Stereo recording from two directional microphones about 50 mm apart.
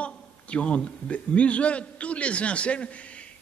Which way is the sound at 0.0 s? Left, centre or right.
Left.